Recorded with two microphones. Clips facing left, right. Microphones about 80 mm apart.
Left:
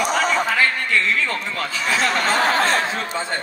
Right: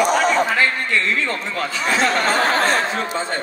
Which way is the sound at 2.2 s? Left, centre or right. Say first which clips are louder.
Right 1 dB; right.